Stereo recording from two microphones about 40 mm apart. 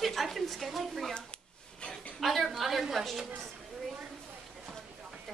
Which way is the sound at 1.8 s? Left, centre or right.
Left.